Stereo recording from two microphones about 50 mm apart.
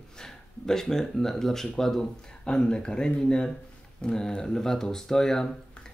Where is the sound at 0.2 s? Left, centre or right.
Centre.